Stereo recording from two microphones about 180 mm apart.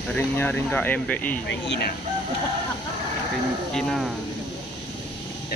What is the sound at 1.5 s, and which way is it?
Speech, 70° left (ahead or behind).